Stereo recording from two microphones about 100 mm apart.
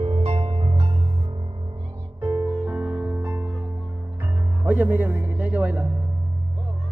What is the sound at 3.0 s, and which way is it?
Music, 20° right (ahead or behind).